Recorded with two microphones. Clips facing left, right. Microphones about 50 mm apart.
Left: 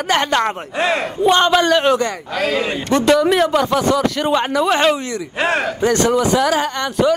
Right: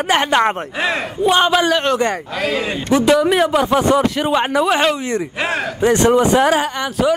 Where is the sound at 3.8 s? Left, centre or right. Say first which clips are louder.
Right 2 dB; right.